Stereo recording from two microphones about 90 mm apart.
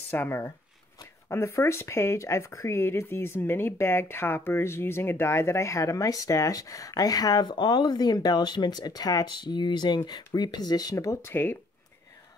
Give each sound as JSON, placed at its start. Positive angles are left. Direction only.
{"t": 0.1, "sound": "speech", "side_deg": 25}